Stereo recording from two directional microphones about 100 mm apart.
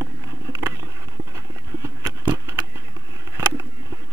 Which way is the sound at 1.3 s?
30° right (ahead or behind).